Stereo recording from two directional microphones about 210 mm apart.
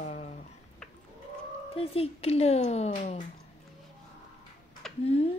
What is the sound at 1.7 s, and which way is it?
Speech, 25° left (ahead or behind).